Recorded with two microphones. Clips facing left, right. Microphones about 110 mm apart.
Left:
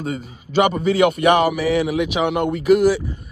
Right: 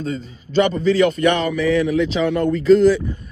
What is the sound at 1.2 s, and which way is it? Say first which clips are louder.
Speech: left 1 dB; 45° right (ahead or behind).